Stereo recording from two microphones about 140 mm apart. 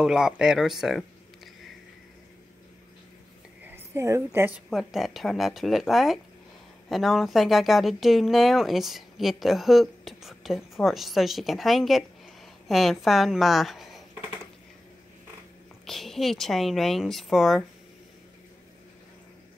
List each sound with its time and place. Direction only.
0.0 s speech: 5° right (ahead or behind)
3.6 s a woman's voice: 20° right (ahead or behind)
4.6 s a woman's voice: centre (ahead or behind)
15.8 s speech: centre (ahead or behind)